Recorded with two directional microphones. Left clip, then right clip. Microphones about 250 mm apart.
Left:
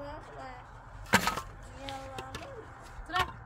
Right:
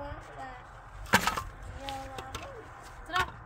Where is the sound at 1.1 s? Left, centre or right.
Centre.